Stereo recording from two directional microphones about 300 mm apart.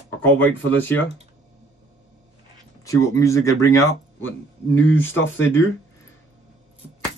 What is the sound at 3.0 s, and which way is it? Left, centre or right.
Speech, centre.